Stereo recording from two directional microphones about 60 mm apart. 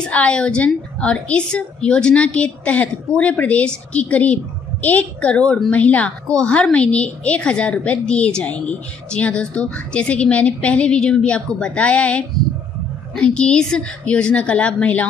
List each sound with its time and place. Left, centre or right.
0.1 s a woman's voice: centre